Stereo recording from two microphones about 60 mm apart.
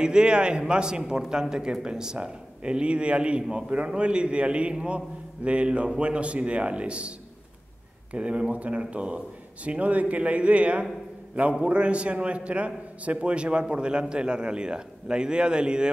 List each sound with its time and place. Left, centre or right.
0.0 s a man's voice: centre